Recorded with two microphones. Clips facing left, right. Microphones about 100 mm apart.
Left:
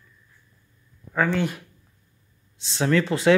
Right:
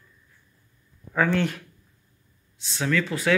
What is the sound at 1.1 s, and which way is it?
Speech, 5° left (ahead or behind).